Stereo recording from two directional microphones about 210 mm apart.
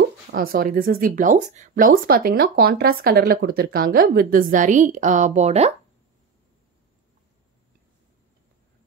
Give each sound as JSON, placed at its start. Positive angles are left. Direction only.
{"t": 0.3, "sound": "speech", "side_deg": -45}